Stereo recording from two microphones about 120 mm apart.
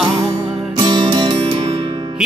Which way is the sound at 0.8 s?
40° right (ahead or behind).